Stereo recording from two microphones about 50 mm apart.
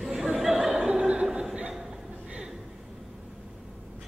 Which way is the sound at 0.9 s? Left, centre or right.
Right.